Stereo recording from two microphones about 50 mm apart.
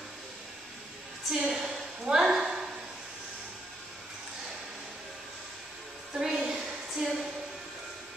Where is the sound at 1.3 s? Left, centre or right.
Centre.